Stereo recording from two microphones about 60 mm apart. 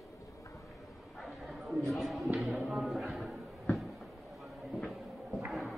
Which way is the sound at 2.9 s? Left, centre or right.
Centre.